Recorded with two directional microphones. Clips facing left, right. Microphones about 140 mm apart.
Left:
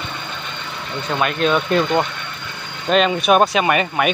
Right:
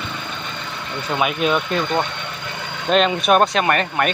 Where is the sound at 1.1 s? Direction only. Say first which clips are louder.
Left 1 dB; 5° right (ahead or behind).